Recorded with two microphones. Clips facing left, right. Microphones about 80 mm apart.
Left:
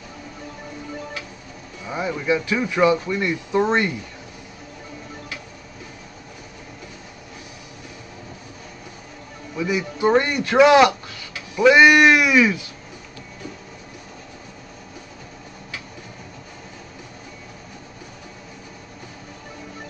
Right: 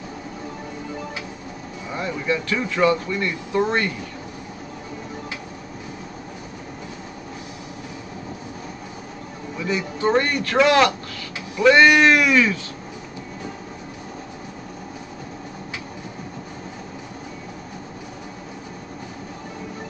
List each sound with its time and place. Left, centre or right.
1.9 s speech: centre
9.6 s speech: centre